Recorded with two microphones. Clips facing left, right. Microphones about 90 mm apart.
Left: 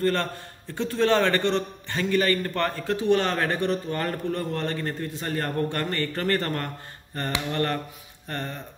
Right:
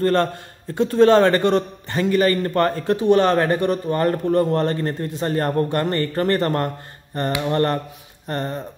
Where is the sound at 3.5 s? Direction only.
45° right (ahead or behind).